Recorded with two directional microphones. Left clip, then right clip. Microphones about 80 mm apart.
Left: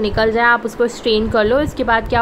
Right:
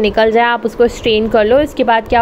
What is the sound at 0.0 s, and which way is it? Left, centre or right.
A woman's voice, right.